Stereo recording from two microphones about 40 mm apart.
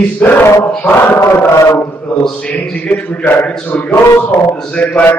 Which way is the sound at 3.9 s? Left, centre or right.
Left.